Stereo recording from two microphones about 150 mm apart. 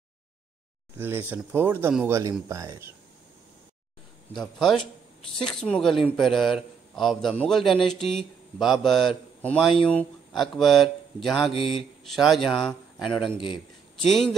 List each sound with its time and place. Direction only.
0.9 s speech: 15° right (ahead or behind)
4.6 s a man's voice: centre (ahead or behind)
11.5 s mantra: 35° left (ahead or behind)
12.0 s a man's voice: centre (ahead or behind)